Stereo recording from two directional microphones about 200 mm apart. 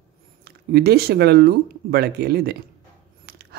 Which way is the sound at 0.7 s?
50° right (ahead or behind).